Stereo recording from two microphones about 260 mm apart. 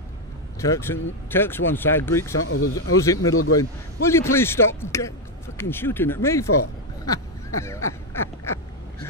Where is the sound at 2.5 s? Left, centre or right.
Left.